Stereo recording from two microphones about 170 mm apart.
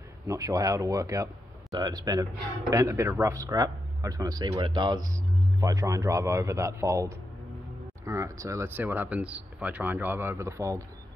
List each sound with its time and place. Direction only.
0.3 s speech: 20° right (ahead or behind)